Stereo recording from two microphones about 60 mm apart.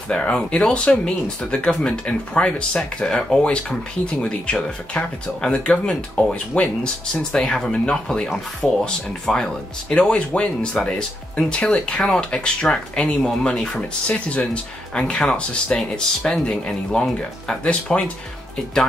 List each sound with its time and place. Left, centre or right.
0.1 s speech: centre